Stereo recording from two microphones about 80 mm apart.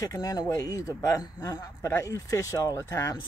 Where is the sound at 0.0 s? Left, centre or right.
Left.